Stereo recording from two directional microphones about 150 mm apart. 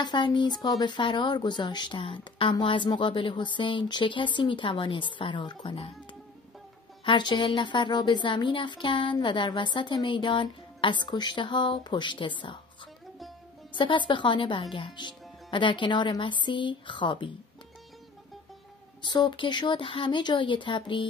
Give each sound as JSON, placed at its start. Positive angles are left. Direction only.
{"t": 0.0, "sound": "a woman's voice", "side_deg": 30}
{"t": 7.1, "sound": "a woman's voice", "side_deg": 30}
{"t": 13.7, "sound": "a woman's voice", "side_deg": 35}
{"t": 19.0, "sound": "a woman's voice", "side_deg": 30}